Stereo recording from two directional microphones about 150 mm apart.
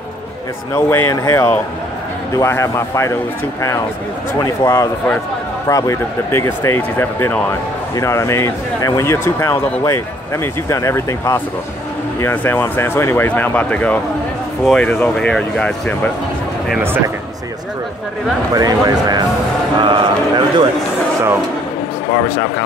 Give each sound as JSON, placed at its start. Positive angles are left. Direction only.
{"t": 0.7, "sound": "speech", "side_deg": 15}
{"t": 4.4, "sound": "speech", "side_deg": 20}
{"t": 18.5, "sound": "speech", "side_deg": -25}